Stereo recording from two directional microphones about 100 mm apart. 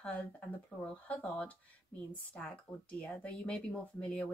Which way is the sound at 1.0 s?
15° left (ahead or behind).